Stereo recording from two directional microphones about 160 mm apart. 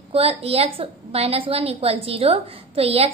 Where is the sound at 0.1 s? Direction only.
35° right (ahead or behind).